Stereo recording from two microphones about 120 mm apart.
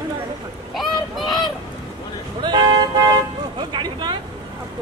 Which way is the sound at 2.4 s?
35° right (ahead or behind).